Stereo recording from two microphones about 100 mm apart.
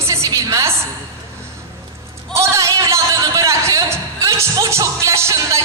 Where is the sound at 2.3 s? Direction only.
30° right (ahead or behind).